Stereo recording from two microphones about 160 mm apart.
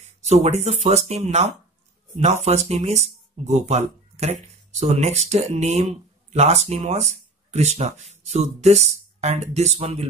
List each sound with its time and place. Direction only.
0.0 s speech: 45° right (ahead or behind)